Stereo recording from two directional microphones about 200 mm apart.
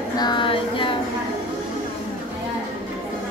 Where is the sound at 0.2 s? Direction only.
25° left (ahead or behind).